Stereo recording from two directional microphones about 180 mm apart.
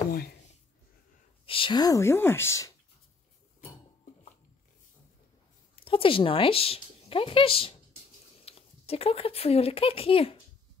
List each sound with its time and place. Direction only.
0.1 s a sound: 55° left (ahead or behind)
1.4 s speech: 30° left (ahead or behind)
5.9 s speech: 30° left (ahead or behind)